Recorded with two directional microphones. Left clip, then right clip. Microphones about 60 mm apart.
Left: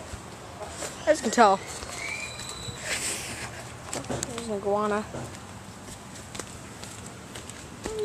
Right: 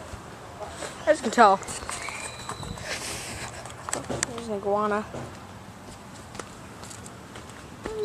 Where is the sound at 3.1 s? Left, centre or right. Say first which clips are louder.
Even; right.